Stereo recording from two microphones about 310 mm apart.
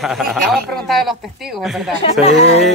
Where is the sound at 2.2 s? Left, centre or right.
Centre.